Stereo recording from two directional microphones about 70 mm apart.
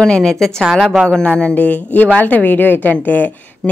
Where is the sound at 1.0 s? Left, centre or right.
Centre.